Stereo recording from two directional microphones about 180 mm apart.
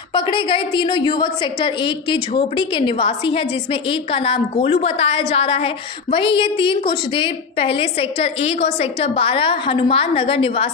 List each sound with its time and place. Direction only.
0.1 s a woman's voice: 30° left (ahead or behind)